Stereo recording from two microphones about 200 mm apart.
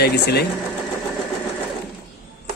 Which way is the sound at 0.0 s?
55° left (ahead or behind).